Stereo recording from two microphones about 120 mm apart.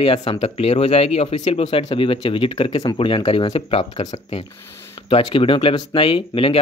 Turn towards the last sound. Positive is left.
turn(degrees=50)  # may be behind; listen again after turning